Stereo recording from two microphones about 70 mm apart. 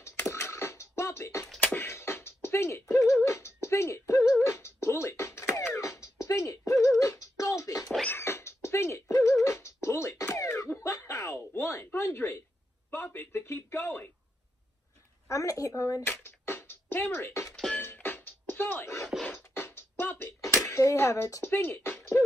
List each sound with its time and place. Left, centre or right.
0.0 s music: left
1.6 s beatboxing: left
1.9 s music: left
3.3 s beatboxing: left
5.8 s music: left
8.2 s cat: left
8.6 s a sound: left
9.2 s beatboxing: left
10.8 s a sound: left
15.2 s a sound: left
16.0 s music: left
17.7 s music: left